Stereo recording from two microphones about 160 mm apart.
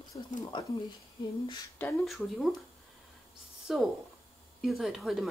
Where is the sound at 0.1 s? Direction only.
30° left (ahead or behind).